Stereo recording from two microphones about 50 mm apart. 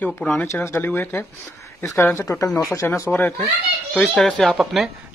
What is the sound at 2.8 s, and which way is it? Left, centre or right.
Speech, left.